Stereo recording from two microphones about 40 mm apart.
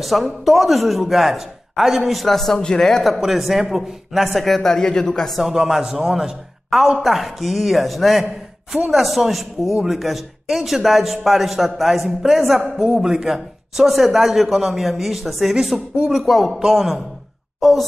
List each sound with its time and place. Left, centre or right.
0.0 s a man's voice: centre
2.2 s a man's voice: centre
3.2 s a man's voice: centre
4.6 s a man's voice: centre
5.4 s a man's voice: centre